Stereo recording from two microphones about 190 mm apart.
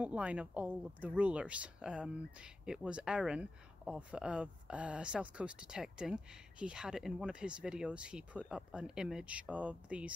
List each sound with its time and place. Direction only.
0.0 s speech: 5° right (ahead or behind)